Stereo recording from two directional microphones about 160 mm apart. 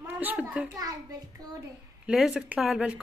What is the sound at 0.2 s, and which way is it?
Speech, 10° right (ahead or behind).